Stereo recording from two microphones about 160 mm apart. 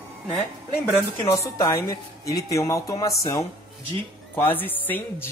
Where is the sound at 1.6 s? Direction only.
20° left (ahead or behind).